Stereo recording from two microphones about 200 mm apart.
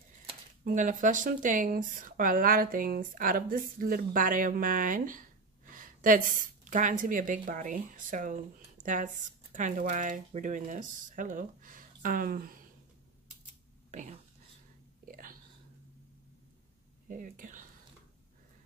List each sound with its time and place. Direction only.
0.7 s a woman's voice: 40° right (ahead or behind)
13.9 s speech: 35° right (ahead or behind)
15.0 s whispering: 45° right (ahead or behind)
17.1 s speech: 40° right (ahead or behind)